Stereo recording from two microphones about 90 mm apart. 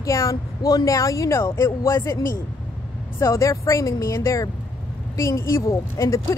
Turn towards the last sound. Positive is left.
turn(degrees=35)  # may be behind; listen again after turning